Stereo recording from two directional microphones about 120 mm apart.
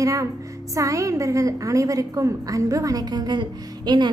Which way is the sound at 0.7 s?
25° right (ahead or behind).